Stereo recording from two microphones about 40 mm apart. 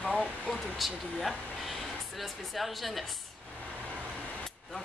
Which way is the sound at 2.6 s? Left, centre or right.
Centre.